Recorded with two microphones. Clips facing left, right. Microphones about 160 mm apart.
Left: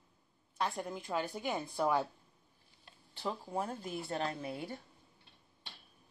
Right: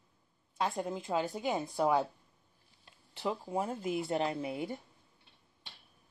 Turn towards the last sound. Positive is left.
turn(degrees=-15)  # may be behind; listen again after turning